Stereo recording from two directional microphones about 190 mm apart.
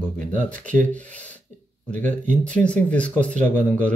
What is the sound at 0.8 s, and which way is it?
Speech, 10° left (ahead or behind).